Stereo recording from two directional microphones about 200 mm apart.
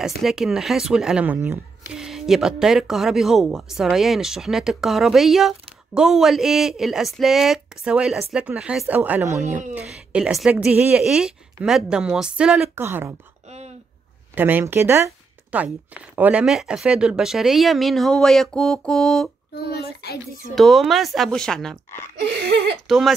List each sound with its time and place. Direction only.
0.2 s speech: 5° right (ahead or behind)
14.3 s speech: 10° right (ahead or behind)
19.5 s a child's voice: 50° left (ahead or behind)
20.5 s speech: centre (ahead or behind)